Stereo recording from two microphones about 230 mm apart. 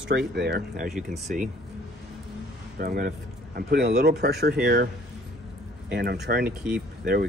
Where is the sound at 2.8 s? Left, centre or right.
Right.